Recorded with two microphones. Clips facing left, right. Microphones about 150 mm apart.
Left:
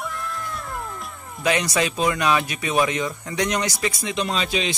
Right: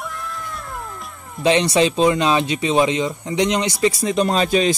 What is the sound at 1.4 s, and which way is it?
Speech, 25° right (ahead or behind).